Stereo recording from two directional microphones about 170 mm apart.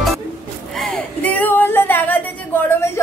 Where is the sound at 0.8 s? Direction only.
5° left (ahead or behind).